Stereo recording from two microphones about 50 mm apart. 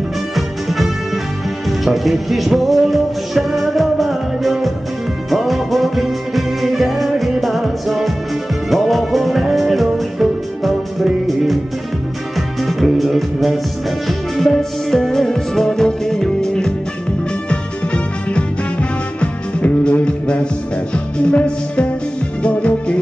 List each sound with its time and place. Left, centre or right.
0.7 s music: centre
12.4 s music: centre; by 22.9 s left